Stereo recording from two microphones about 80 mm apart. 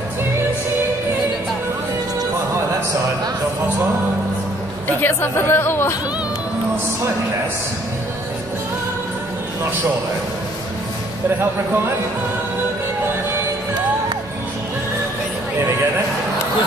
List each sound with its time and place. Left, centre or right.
4.8 s a woman's voice: left